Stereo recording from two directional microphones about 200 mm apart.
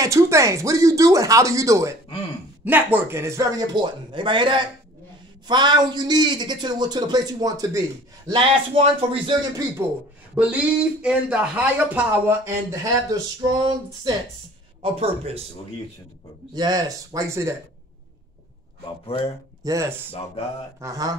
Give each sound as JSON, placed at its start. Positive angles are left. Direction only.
{"t": 0.0, "sound": "a man's voice", "side_deg": -15}
{"t": 10.3, "sound": "a man's voice", "side_deg": -5}
{"t": 16.5, "sound": "speech", "side_deg": -20}
{"t": 19.6, "sound": "speech", "side_deg": -15}